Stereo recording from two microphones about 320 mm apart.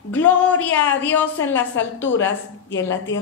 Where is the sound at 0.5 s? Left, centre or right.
Left.